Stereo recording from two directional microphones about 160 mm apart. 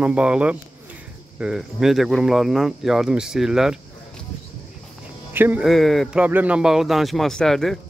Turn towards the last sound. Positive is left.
turn(degrees=0)  # may be behind; listen again after turning